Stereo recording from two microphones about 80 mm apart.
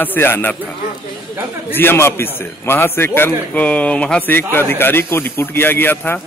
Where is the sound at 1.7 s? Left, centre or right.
Left.